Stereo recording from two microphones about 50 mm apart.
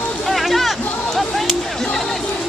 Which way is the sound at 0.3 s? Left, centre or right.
Centre.